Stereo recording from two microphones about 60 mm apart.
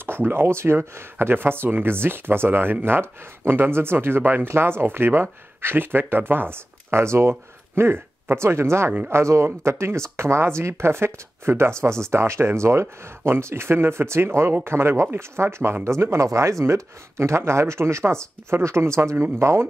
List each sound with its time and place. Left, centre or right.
0.0 s speech: right